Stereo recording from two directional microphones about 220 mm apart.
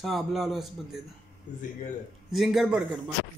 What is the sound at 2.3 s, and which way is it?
Speech, centre (ahead or behind).